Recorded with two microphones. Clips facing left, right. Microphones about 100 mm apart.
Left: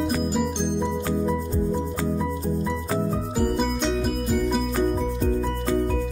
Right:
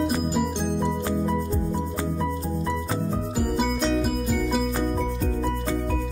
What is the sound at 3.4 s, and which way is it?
Music, centre (ahead or behind).